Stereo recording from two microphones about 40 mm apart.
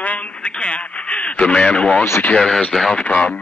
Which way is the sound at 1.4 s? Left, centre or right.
Left.